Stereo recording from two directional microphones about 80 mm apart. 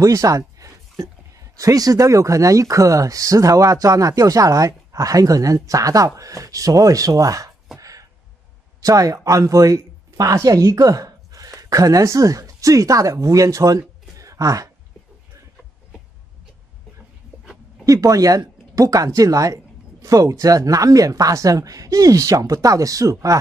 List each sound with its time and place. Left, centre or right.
0.0 s speech: right
7.8 s a sound: right
8.8 s speech: right
17.8 s speech: right